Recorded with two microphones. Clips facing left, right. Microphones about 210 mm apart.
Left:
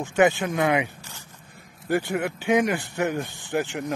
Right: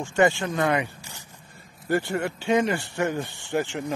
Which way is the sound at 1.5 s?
15° left (ahead or behind).